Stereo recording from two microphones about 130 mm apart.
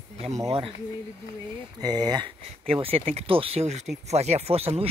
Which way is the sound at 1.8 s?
30° right (ahead or behind).